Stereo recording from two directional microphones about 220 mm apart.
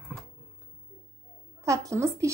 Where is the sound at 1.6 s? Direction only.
15° right (ahead or behind).